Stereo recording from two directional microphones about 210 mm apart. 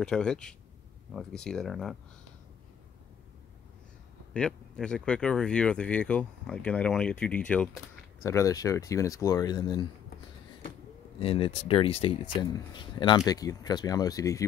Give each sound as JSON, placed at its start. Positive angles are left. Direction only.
{"t": 0.0, "sound": "speech", "side_deg": 5}
{"t": 4.3, "sound": "speech", "side_deg": 5}
{"t": 11.1, "sound": "speech", "side_deg": 25}